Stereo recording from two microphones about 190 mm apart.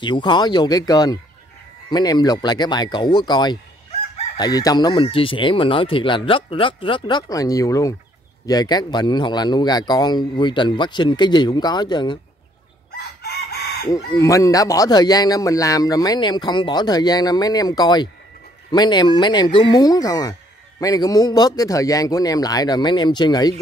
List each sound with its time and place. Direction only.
0.0 s speech: 25° left (ahead or behind)
12.9 s chicken: 55° left (ahead or behind)
13.8 s speech: 15° left (ahead or behind)